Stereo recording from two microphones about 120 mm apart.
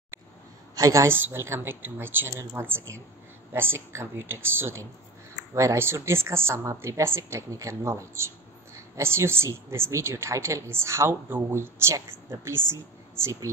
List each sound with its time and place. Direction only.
0.7 s a woman's voice: 25° right (ahead or behind)